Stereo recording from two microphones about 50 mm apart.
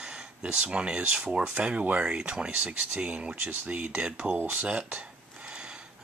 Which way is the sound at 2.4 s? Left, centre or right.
Right.